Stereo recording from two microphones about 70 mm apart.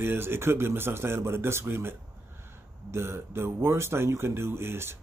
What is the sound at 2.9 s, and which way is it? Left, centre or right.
Speech, right.